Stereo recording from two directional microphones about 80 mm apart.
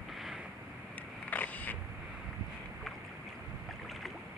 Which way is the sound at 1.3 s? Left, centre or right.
Left.